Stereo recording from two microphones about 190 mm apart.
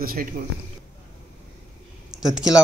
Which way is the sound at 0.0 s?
50° right (ahead or behind).